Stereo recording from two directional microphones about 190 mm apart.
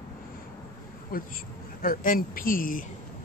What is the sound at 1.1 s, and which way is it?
Speech, 50° left (ahead or behind).